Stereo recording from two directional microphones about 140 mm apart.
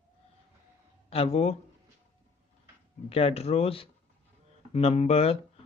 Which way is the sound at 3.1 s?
45° left (ahead or behind).